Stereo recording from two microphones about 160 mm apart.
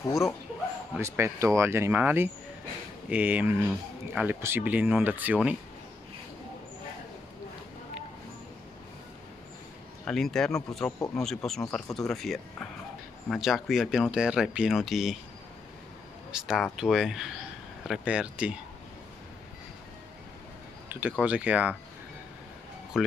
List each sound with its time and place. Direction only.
0.9 s speech: 15° right (ahead or behind)
10.0 s speech: 5° left (ahead or behind)
16.3 s speech: 5° right (ahead or behind)
20.9 s speech: 10° right (ahead or behind)
23.0 s speech: 5° right (ahead or behind)